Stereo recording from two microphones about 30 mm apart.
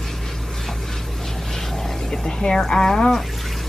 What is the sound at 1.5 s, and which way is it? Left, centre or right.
Vehicle, centre.